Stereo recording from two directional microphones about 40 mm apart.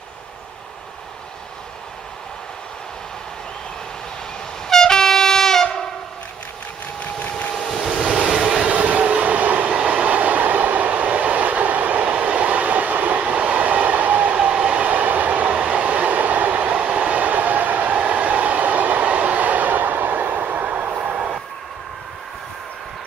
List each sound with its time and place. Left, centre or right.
4.6 s train: centre
7.0 s a sound: left
7.8 s vehicle: centre
8.4 s train: right
12.1 s train: right
21.1 s train: right